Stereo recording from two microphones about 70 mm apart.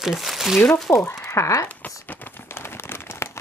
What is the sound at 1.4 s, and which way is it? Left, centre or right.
Speech, left.